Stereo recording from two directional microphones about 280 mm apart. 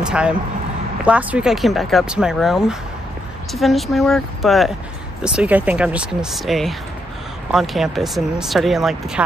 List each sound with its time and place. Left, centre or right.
0.0 s speech: centre